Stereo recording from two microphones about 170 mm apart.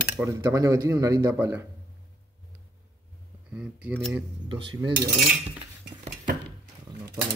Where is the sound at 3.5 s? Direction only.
5° right (ahead or behind).